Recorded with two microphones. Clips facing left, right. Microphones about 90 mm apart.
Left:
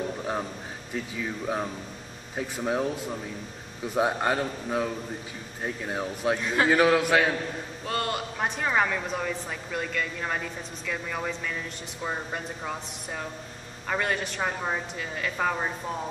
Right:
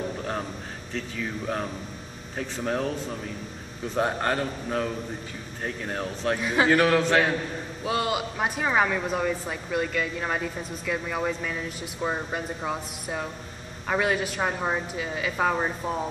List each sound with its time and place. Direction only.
0.2 s a sound: 10° left (ahead or behind)
0.9 s a man's voice: 10° left (ahead or behind)
6.3 s speech: 5° right (ahead or behind)
7.8 s speech: 5° right (ahead or behind)